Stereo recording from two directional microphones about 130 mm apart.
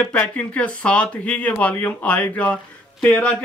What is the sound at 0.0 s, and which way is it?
Speech, 10° left (ahead or behind).